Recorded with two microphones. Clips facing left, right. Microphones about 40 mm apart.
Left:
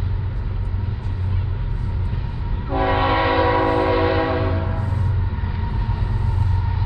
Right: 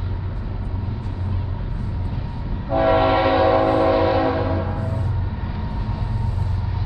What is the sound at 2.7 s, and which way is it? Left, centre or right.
Train, centre.